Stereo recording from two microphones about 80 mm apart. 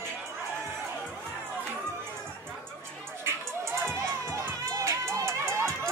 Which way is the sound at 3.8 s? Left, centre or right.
Right.